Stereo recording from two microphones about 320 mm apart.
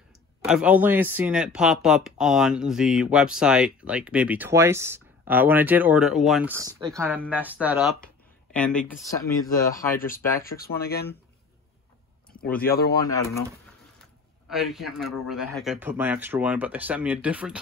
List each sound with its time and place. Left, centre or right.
0.5 s speech: centre
9.9 s speech: left
12.4 s speech: centre
14.5 s speech: centre